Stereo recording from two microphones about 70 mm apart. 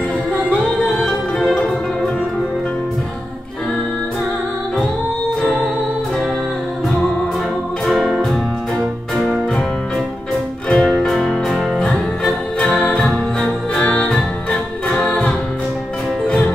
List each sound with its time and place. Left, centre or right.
0.5 s music: centre
1.0 s music: centre
5.4 s music: centre
7.8 s music: centre
10.7 s music: centre
13.7 s music: centre